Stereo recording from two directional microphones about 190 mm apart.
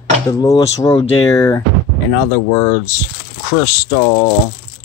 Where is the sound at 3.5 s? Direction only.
35° left (ahead or behind).